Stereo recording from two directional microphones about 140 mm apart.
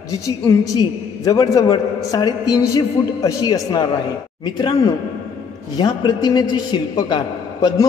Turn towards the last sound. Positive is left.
turn(degrees=30)  # may be behind; listen again after turning